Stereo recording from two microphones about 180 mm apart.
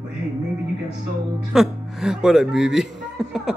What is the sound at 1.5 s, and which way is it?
Speech, centre (ahead or behind).